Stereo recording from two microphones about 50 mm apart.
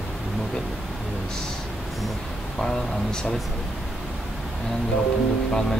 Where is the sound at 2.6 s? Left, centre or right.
Centre.